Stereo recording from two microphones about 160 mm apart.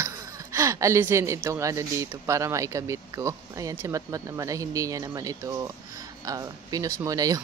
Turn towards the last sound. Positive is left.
turn(degrees=-20)  # may be behind; listen again after turning